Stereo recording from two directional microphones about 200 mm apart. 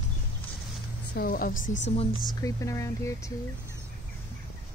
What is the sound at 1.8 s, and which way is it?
Speech, 30° left (ahead or behind).